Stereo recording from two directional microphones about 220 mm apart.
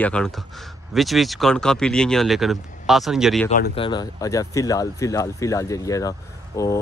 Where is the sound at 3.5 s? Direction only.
40° left (ahead or behind).